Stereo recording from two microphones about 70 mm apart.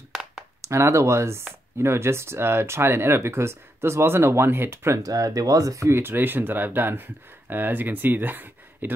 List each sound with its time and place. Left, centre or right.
0.6 s speech: right
4.9 s speech: right